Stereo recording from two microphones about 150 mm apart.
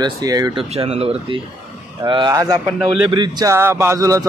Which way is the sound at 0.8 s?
40° right (ahead or behind).